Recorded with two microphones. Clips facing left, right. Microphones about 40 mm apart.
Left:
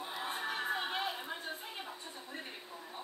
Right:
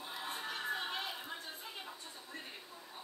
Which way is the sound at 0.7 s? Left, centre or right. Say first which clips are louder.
Left 1 dB; left.